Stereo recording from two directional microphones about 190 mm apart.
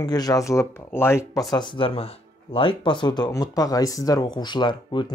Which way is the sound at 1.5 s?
25° left (ahead or behind).